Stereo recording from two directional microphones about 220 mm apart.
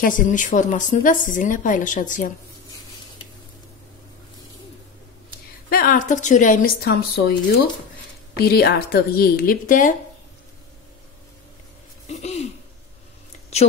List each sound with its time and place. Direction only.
0.0 s a woman's voice: 35° left (ahead or behind)
5.7 s a woman's voice: 40° left (ahead or behind)
12.1 s a sound: 30° left (ahead or behind)